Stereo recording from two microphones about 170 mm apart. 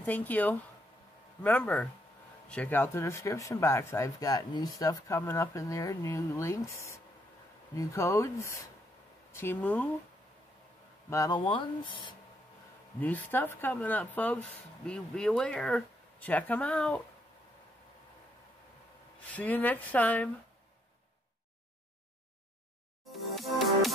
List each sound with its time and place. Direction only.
0.0 s speech: 10° left (ahead or behind)
11.1 s speech: 20° left (ahead or behind)
13.0 s speech: 10° left (ahead or behind)
19.3 s speech: 10° left (ahead or behind)
23.3 s music: centre (ahead or behind)